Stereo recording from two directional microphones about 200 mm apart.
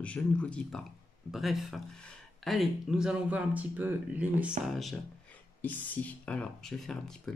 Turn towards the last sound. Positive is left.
turn(degrees=5)  # may be behind; listen again after turning